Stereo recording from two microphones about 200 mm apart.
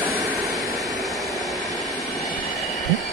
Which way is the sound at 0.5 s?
Centre (ahead or behind).